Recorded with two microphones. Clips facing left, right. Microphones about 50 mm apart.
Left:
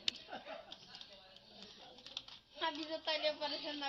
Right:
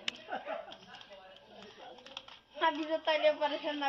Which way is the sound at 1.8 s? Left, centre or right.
Right.